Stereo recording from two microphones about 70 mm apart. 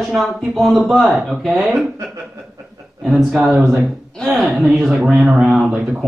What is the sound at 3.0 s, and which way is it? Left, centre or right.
Speech, centre.